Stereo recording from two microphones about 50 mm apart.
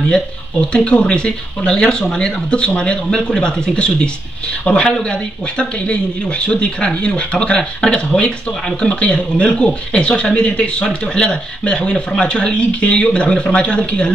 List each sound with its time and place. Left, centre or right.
0.1 s speech: centre